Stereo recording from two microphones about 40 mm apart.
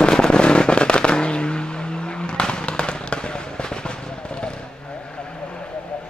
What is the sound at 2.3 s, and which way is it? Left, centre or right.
Fireworks, left.